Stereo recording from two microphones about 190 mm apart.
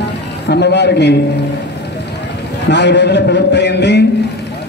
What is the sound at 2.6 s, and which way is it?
A man's voice, 65° left (ahead or behind).